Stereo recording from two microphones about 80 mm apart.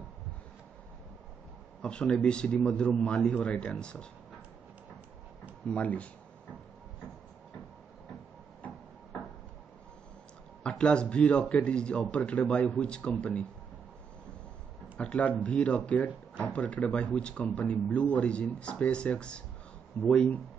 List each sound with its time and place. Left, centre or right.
1.8 s speech: centre
5.7 s speech: centre
10.6 s speech: centre
15.0 s speech: centre